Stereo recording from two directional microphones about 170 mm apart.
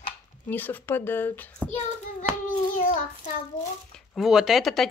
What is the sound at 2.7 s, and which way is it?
Child singing, 50° left (ahead or behind).